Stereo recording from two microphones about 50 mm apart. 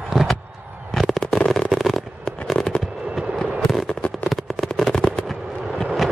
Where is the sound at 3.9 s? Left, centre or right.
Left.